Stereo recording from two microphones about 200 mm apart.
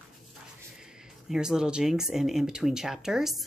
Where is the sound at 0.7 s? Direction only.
5° right (ahead or behind).